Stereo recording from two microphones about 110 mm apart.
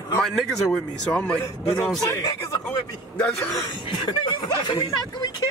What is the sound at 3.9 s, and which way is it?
Speech, 45° left (ahead or behind).